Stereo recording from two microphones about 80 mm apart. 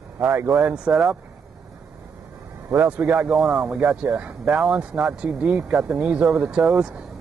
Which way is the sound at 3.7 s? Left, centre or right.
Centre.